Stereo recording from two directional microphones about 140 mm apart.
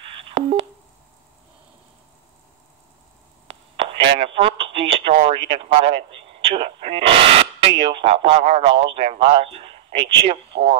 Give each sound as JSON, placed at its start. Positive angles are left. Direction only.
{"t": 3.4, "sound": "speech", "side_deg": -40}